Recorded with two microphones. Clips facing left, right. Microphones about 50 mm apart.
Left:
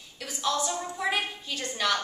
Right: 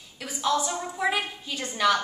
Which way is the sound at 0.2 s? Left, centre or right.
Centre.